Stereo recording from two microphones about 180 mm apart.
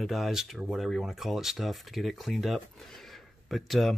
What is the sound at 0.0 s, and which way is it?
Speech, centre (ahead or behind).